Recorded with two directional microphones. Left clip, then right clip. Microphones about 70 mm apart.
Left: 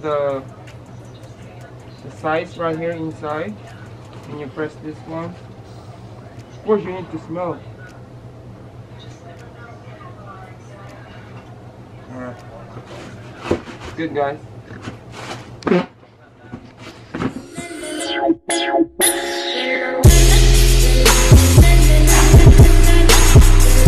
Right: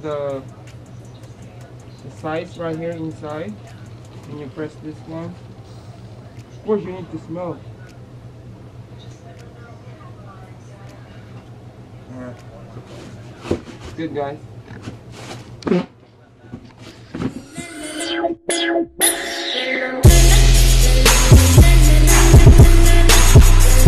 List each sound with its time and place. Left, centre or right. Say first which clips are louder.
0.0 s speech: left 5 dB; left
2.2 s speech: left 5 dB; centre
6.6 s speech: left 3 dB; left
12.1 s a sound: left 3 dB; centre
17.3 s music: left 2 dB; centre